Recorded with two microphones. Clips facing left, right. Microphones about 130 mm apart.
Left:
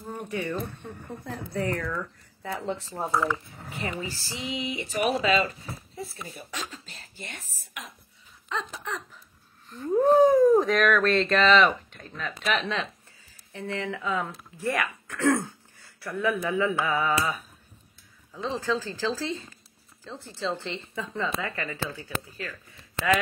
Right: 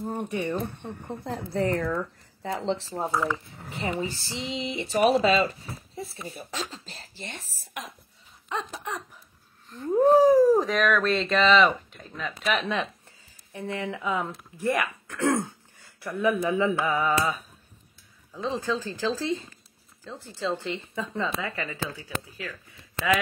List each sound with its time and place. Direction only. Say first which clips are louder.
0.0 s speech: right 3 dB; 30° right (ahead or behind)
3.1 s a woman's voice: left 2 dB; 15° right (ahead or behind); by 7.9 s 35° right (ahead or behind)
8.5 s a woman's voice: right 1 dB; 15° right (ahead or behind)
18.6 s a woman's voice: even; 15° right (ahead or behind)